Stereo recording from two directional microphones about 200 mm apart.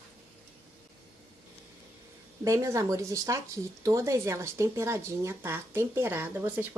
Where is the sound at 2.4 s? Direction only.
15° right (ahead or behind).